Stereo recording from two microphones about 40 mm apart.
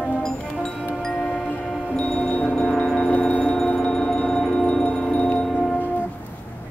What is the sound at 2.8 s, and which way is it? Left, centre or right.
Wind chime, centre.